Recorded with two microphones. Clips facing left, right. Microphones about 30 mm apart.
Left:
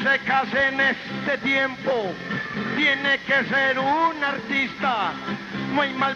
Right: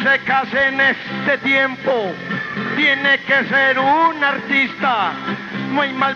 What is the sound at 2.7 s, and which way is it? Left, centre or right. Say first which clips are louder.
Speech: right 6 dB; right.